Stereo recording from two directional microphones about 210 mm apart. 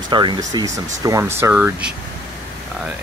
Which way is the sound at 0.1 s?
20° right (ahead or behind).